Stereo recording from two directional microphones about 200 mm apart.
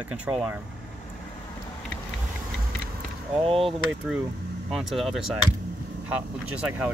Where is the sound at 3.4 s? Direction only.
30° right (ahead or behind).